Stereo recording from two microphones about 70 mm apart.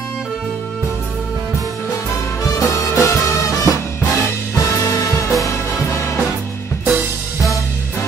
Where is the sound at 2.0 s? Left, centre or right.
Left.